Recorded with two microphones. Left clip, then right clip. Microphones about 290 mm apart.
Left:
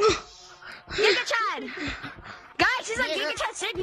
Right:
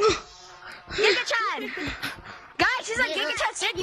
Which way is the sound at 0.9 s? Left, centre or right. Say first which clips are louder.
Even; centre.